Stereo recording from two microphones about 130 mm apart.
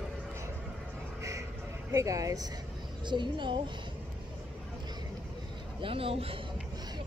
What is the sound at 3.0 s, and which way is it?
Speech, 35° right (ahead or behind).